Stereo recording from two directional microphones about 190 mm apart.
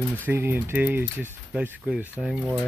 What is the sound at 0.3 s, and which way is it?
Speech, 10° right (ahead or behind).